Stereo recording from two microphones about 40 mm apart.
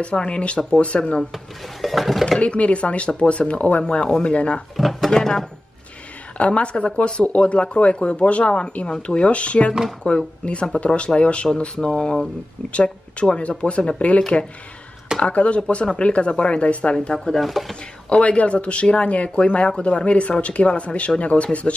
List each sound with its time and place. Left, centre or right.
0.0 s speech: left
1.3 s speech: centre
2.4 s speech: left
4.7 s drawer open or close: centre
5.1 s speech: centre
6.3 s speech: left
12.7 s speech: left
17.3 s speech: centre
18.2 s speech: left